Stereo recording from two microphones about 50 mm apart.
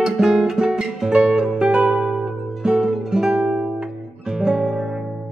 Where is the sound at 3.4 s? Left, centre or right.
Centre.